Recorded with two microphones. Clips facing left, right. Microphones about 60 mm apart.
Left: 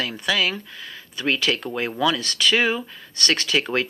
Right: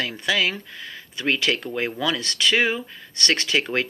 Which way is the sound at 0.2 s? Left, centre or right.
Right.